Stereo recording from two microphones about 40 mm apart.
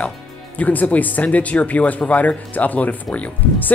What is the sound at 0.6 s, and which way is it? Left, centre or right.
Speech, left.